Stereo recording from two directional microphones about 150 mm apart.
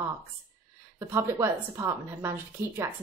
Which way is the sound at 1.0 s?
20° right (ahead or behind).